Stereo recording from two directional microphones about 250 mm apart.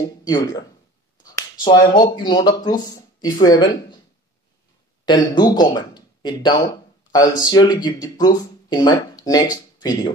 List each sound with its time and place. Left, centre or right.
0.0 s speech: centre
5.0 s speech: centre